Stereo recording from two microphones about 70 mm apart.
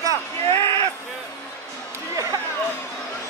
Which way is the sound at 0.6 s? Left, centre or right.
Left.